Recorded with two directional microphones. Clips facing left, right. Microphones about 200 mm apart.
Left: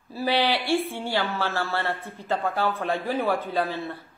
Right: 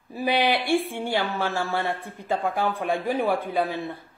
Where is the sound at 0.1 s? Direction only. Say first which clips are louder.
Right 1 dB; 15° right (ahead or behind).